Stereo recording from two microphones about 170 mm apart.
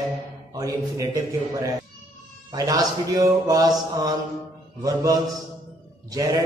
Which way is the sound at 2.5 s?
20° right (ahead or behind).